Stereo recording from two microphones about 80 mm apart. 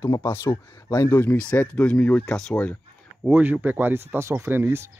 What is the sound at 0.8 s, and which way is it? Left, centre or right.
Speech, left.